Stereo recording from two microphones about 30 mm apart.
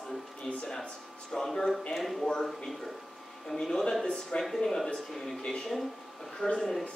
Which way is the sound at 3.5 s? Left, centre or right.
Left.